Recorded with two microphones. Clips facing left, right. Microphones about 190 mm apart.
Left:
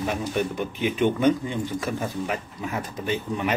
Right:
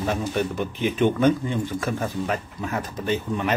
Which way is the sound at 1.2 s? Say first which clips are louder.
Right 1 dB; 15° left (ahead or behind).